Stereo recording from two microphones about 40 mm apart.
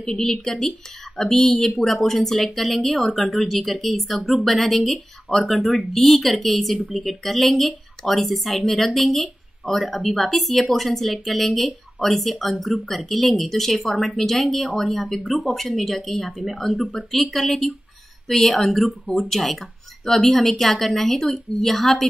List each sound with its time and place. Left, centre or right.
0.0 s a woman's voice: centre
15.0 s speech: left
15.5 s a woman's voice: centre